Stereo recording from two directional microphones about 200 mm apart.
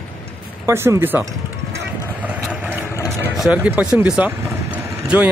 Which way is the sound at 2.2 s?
5° right (ahead or behind).